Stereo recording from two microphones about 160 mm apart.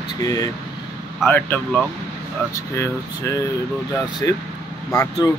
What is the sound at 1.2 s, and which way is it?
Speech, 10° left (ahead or behind).